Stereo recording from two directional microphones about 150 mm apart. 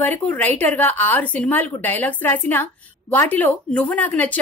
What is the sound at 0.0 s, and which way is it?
Speech, 10° left (ahead or behind).